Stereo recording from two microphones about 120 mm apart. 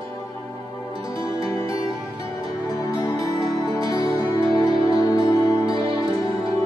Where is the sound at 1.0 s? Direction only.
30° left (ahead or behind).